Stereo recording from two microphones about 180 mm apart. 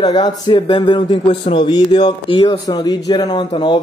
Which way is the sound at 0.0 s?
25° left (ahead or behind).